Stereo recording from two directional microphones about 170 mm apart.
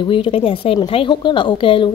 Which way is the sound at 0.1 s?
30° left (ahead or behind).